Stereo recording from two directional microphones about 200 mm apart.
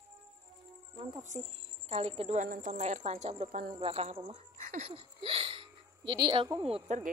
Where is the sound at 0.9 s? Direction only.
30° right (ahead or behind).